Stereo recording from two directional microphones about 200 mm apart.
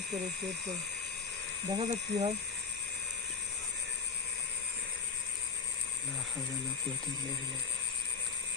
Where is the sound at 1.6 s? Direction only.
20° right (ahead or behind).